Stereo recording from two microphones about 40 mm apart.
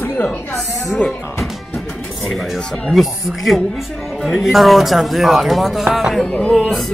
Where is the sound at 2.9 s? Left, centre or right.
Centre.